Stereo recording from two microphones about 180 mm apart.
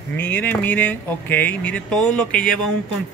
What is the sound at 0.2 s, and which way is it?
Speech, 10° left (ahead or behind).